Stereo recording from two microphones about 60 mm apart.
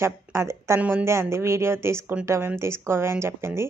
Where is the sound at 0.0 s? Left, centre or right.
Right.